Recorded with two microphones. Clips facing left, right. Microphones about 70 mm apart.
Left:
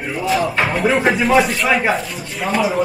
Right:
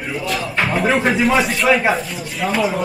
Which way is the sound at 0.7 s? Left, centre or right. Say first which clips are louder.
Even; centre.